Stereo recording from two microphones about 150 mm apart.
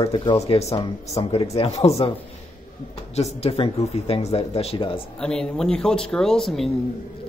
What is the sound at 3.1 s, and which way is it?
Speech, 45° left (ahead or behind).